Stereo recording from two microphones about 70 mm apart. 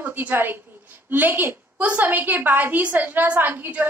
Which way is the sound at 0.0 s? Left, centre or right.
Right.